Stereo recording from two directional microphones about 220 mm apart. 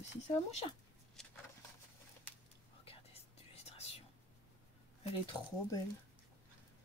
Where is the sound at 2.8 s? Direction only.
25° left (ahead or behind).